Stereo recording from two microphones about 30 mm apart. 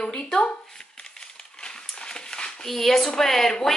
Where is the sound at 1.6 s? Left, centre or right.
Left.